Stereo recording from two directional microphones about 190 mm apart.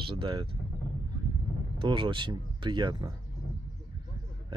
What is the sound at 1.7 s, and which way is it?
Speech, 25° right (ahead or behind).